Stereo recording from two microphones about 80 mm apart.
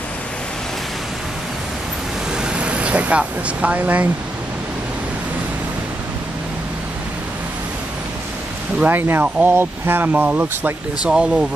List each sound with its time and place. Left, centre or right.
2.3 s speech: centre
8.7 s speech: right
11.1 s speech: centre